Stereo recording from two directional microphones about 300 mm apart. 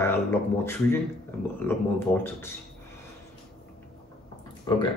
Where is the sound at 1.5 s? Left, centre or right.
Centre.